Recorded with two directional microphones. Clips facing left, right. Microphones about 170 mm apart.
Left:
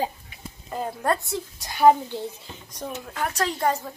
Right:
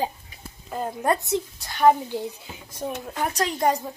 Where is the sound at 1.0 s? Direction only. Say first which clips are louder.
Right 3 dB; 20° right (ahead or behind).